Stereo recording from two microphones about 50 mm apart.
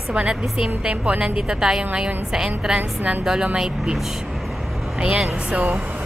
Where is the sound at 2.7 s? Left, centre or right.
Right.